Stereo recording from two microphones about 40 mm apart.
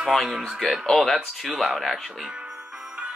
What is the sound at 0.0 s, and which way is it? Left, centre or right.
Speech, centre.